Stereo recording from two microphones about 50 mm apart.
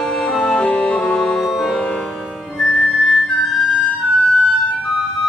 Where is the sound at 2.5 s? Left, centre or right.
Centre.